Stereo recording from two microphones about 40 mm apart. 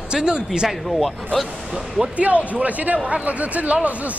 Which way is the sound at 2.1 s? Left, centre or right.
Right.